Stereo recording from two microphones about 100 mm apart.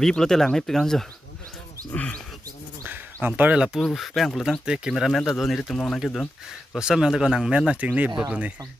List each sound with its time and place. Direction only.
0.0 s speech: 5° left (ahead or behind)
1.9 s speech: 15° left (ahead or behind)
2.8 s speech: 20° right (ahead or behind); by 6.2 s 5° left (ahead or behind)
6.7 s speech: 10° right (ahead or behind)